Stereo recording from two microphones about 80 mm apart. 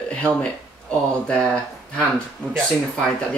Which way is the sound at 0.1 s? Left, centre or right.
Centre.